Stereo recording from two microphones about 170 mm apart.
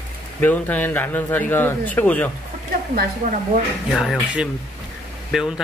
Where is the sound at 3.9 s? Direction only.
Centre (ahead or behind).